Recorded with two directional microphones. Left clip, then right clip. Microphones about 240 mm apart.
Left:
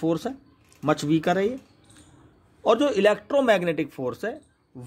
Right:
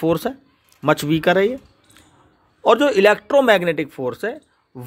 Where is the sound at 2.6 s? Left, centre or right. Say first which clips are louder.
Right 6 dB; right.